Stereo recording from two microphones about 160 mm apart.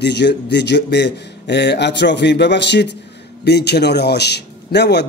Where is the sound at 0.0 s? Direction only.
90° left.